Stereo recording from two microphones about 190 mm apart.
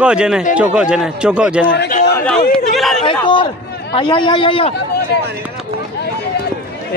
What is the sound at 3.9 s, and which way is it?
Speech, 25° left (ahead or behind).